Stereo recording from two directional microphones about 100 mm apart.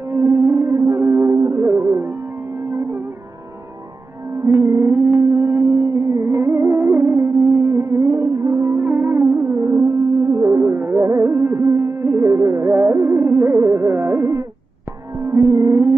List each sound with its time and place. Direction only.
0.1 s music: 25° right (ahead or behind)
4.4 s music: 25° right (ahead or behind)
15.2 s insect: 30° right (ahead or behind)